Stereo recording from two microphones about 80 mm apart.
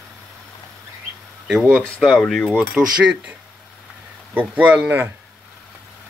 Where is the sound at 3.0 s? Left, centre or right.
Centre.